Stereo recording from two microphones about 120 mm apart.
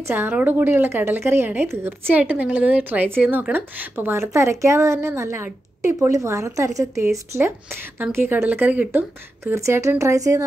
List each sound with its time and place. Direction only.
0.0 s a woman's voice: 15° right (ahead or behind)